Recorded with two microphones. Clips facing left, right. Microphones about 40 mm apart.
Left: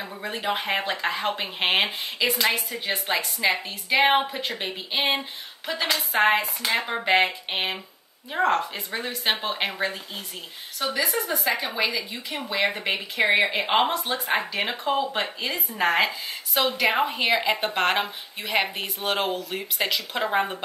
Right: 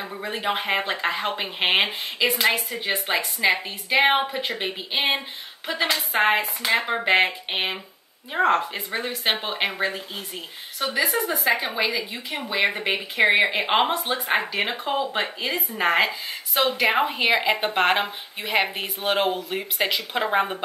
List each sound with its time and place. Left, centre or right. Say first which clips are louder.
0.0 s speech: right 2 dB; centre